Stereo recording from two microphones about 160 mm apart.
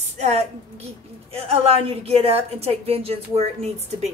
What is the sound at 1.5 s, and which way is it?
A woman's voice, 40° right (ahead or behind).